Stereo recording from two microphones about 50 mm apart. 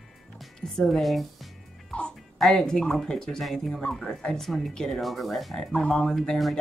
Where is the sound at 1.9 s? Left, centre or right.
Left.